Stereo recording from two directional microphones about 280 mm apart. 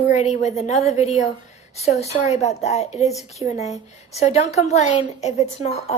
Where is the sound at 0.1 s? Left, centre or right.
Left.